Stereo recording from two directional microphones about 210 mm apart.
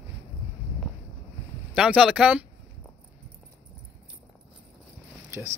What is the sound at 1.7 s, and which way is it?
Speech, 5° right (ahead or behind).